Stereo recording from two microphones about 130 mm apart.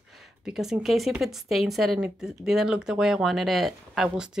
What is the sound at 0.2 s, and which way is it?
Speech, 5° right (ahead or behind).